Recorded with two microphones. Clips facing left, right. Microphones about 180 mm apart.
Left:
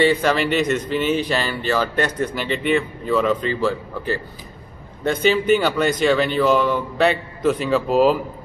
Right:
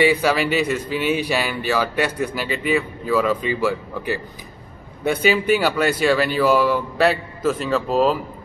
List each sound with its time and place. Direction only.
0.0 s speech: 10° right (ahead or behind)